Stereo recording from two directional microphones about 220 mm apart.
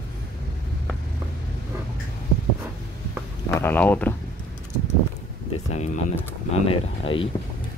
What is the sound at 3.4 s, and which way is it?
Speech, 10° left (ahead or behind).